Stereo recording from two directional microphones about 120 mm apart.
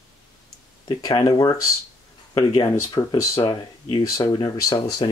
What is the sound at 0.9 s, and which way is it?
Speech, 35° left (ahead or behind).